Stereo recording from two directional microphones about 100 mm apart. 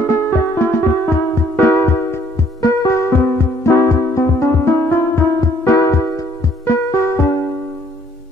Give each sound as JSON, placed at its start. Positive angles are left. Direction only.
{"t": 0.0, "sound": "music", "side_deg": 25}